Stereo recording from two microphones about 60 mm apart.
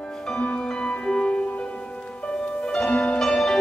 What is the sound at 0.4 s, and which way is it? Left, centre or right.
Music, centre.